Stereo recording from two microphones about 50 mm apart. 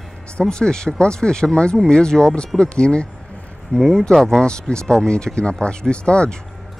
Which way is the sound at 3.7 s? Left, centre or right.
Centre.